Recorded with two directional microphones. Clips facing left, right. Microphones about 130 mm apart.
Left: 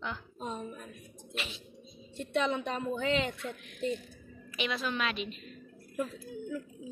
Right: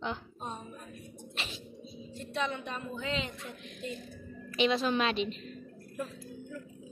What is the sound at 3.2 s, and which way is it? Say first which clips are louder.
Speech: left 5 dB; 70° left (ahead or behind).